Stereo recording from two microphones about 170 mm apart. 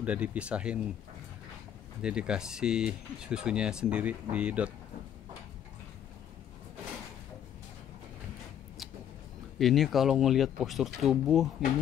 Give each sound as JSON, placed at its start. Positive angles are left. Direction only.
{"t": 0.0, "sound": "speech", "side_deg": -10}
{"t": 2.0, "sound": "speech", "side_deg": -5}
{"t": 9.6, "sound": "speech", "side_deg": 0}